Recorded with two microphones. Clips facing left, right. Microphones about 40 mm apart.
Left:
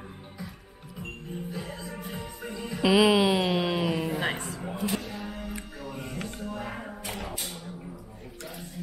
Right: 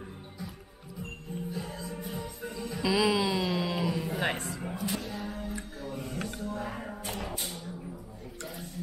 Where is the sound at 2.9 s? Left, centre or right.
Centre.